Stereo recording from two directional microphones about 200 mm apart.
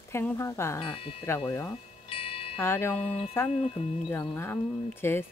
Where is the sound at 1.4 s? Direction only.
15° left (ahead or behind).